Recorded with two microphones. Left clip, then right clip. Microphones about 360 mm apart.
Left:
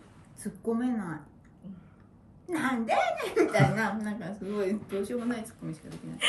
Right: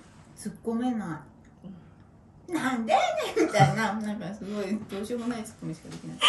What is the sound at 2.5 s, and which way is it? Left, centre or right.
A woman's voice, centre.